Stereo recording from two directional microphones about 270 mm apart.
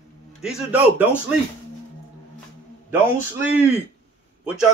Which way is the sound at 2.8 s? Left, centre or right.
Centre.